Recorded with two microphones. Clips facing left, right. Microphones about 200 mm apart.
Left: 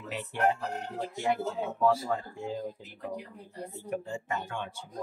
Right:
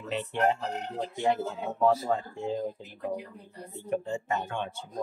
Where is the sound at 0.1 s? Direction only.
25° right (ahead or behind).